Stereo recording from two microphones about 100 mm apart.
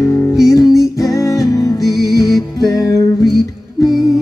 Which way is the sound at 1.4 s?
35° left (ahead or behind).